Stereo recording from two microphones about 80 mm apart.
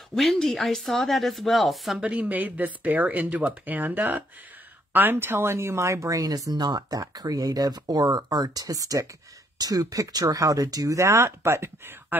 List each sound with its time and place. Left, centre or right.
0.1 s speech: centre
2.0 s speech: centre